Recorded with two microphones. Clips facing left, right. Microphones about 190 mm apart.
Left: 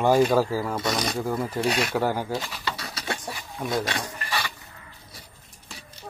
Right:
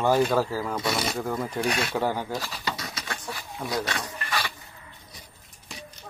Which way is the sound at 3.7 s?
25° left (ahead or behind).